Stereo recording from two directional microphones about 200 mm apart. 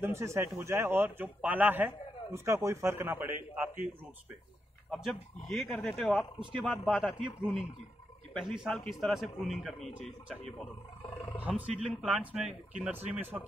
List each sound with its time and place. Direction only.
0.0 s a man's voice: 15° right (ahead or behind)
4.9 s speech: centre (ahead or behind)
8.3 s speech: centre (ahead or behind)
11.0 s speech: 25° left (ahead or behind)
11.4 s a man's voice: 5° right (ahead or behind)